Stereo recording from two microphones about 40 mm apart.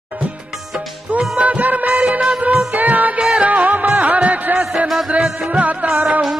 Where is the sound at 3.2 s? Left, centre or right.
Centre.